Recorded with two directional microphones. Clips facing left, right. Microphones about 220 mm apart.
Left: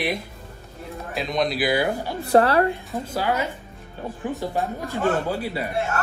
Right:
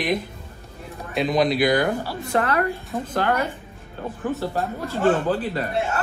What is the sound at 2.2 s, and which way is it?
Speech, 35° left (ahead or behind).